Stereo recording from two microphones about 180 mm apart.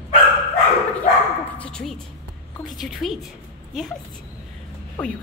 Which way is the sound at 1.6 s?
5° left (ahead or behind).